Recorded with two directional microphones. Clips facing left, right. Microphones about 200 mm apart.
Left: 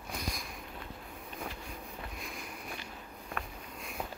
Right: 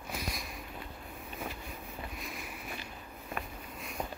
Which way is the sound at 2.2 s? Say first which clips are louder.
Right 1 dB; 5° right (ahead or behind).